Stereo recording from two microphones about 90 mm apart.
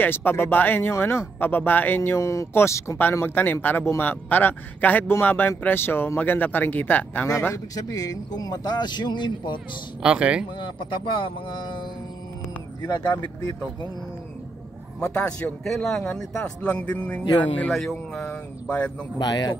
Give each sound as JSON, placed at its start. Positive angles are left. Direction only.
{"t": 0.0, "sound": "speech", "side_deg": 25}
{"t": 2.1, "sound": "speech", "side_deg": 35}
{"t": 7.5, "sound": "speech", "side_deg": 45}
{"t": 10.0, "sound": "speech", "side_deg": -10}
{"t": 10.6, "sound": "speech", "side_deg": 65}
{"t": 13.1, "sound": "speech", "side_deg": 50}
{"t": 15.0, "sound": "a man's voice", "side_deg": 15}
{"t": 15.6, "sound": "speech", "side_deg": 5}
{"t": 17.6, "sound": "speech", "side_deg": 0}
{"t": 18.3, "sound": "a man's voice", "side_deg": 15}
{"t": 19.1, "sound": "speech", "side_deg": 50}